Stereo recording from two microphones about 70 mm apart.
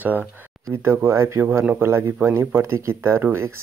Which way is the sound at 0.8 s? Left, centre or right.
Right.